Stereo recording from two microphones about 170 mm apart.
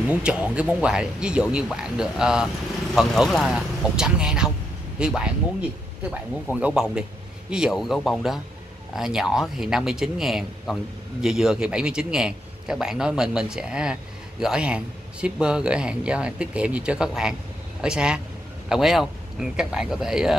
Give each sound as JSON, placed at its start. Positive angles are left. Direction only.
{"t": 0.1, "sound": "speech", "side_deg": -5}